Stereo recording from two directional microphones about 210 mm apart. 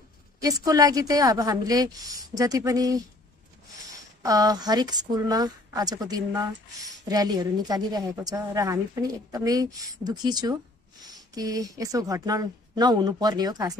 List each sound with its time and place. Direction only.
0.4 s a woman's voice: 15° right (ahead or behind)
4.2 s a woman's voice: 15° right (ahead or behind)